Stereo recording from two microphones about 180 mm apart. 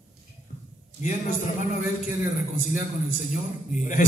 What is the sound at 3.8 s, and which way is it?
Speech, 45° left (ahead or behind).